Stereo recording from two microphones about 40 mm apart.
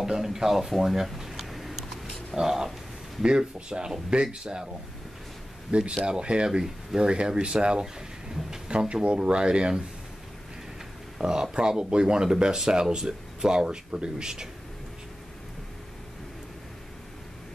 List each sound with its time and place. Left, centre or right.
0.0 s a sound: centre
2.3 s speech: centre
5.7 s speech: right
6.6 s speech: centre
7.1 s speech: right
8.6 s speech: right
11.1 s speech: centre